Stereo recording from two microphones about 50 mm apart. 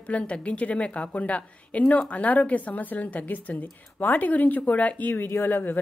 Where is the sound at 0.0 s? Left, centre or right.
Left.